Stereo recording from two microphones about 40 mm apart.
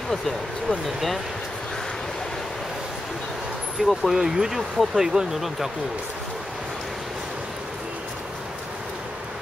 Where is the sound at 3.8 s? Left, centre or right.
Right.